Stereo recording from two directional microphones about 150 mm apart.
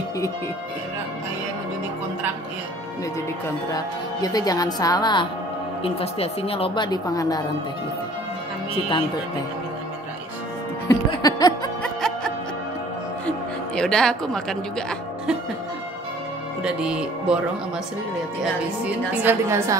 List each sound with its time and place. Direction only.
3.7 s speech: 25° left (ahead or behind)
5.8 s speech: 40° left (ahead or behind); by 7.4 s 25° left (ahead or behind)
11.1 s music: 25° left (ahead or behind)
11.8 s music: 5° left (ahead or behind)
13.7 s speech: 5° left (ahead or behind)
16.6 s a woman's voice: 5° right (ahead or behind)
18.4 s a woman's voice: 10° right (ahead or behind)